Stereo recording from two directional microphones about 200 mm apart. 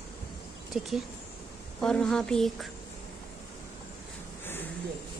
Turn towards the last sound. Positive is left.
turn(degrees=10)  # may be behind; listen again after turning